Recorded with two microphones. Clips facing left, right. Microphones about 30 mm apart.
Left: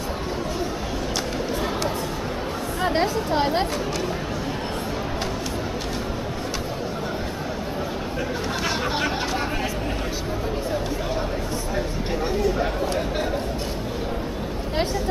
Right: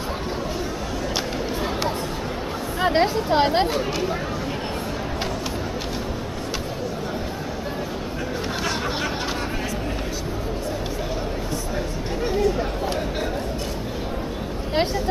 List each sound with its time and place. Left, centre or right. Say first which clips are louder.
2.8 s speech: right 3 dB; centre
12.3 s chatter: right 2 dB; centre